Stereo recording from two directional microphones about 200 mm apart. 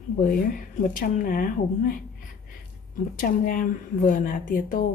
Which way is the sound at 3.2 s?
45° left (ahead or behind).